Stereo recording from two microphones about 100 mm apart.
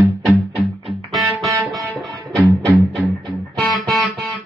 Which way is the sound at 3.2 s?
45° right (ahead or behind).